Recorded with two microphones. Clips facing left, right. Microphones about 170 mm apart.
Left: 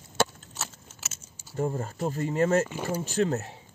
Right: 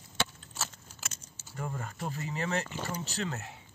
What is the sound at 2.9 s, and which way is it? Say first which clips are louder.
Speech: left 11 dB; 50° left (ahead or behind).